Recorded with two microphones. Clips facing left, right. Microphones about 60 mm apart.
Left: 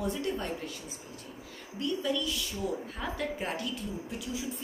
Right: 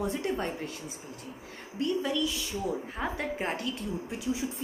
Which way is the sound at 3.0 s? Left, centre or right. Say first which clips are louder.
Right 3 dB; right.